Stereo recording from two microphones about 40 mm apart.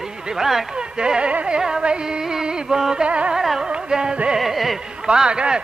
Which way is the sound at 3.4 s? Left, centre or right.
Centre.